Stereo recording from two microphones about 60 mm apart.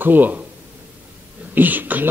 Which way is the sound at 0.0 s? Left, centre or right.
Right.